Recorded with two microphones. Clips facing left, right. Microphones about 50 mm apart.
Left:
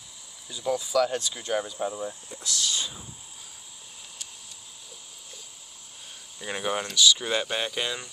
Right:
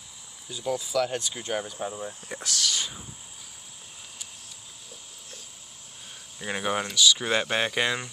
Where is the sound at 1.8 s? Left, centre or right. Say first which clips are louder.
Left 3 dB; centre.